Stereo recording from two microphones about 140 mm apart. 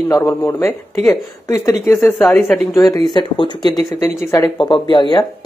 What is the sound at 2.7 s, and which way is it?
Speech, 20° left (ahead or behind).